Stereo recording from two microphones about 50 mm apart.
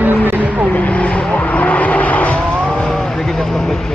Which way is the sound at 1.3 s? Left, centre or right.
Left.